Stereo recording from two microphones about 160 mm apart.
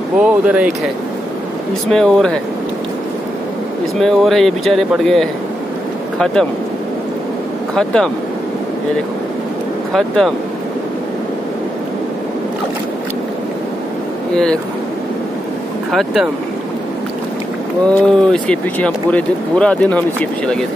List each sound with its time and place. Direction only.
0.2 s speech: 10° right (ahead or behind)
1.9 s speech: 5° left (ahead or behind)
4.0 s speech: centre (ahead or behind)
7.7 s speech: 5° left (ahead or behind)
9.9 s speech: centre (ahead or behind)
14.3 s speech: 5° left (ahead or behind)
15.9 s speech: centre (ahead or behind)
17.8 s speech: 5° left (ahead or behind)